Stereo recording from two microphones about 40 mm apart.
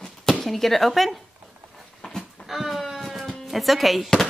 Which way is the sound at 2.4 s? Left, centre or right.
Centre.